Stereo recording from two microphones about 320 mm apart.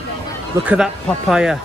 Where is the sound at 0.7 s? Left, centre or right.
Centre.